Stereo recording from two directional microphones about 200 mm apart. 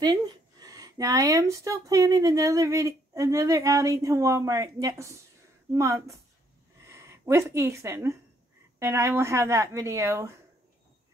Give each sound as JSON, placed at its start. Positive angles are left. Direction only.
{"t": 0.6, "sound": "speech", "side_deg": -20}